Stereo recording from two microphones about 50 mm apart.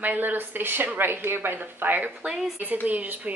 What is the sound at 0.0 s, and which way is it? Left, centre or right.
Speech, right.